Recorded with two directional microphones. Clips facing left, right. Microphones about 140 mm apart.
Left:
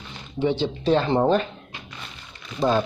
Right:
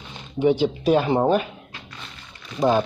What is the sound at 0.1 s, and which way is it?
Speech, 15° right (ahead or behind).